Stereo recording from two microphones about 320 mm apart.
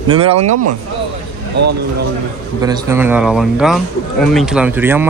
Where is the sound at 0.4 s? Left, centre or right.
Right.